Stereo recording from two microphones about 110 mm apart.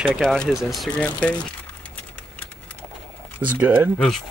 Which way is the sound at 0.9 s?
10° left (ahead or behind).